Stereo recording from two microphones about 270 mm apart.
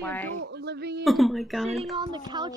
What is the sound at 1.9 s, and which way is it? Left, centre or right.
Speech, centre.